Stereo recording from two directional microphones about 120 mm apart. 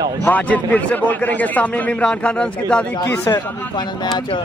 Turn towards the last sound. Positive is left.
turn(degrees=35)  # may be behind; listen again after turning